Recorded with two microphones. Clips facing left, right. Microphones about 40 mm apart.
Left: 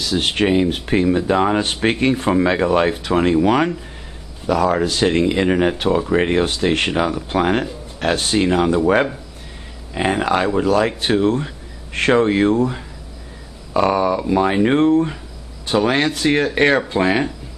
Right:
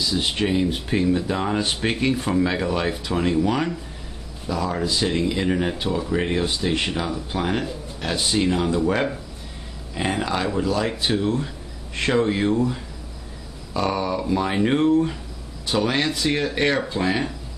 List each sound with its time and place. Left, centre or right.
0.0 s speech: left
0.3 s speech: left
4.5 s speech: left
5.0 s speech: left
13.7 s speech: left